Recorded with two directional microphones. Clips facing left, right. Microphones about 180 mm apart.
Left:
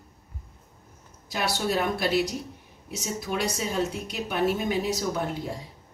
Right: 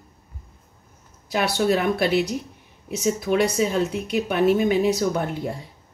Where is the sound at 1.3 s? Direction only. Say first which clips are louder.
Right 6 dB; 60° right (ahead or behind).